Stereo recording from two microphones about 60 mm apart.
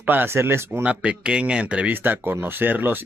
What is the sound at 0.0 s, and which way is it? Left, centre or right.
Speech, right.